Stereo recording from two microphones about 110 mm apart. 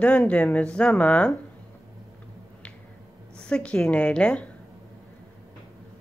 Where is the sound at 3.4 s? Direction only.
10° left (ahead or behind).